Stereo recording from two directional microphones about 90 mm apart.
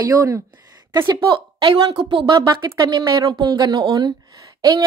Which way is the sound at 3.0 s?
40° right (ahead or behind).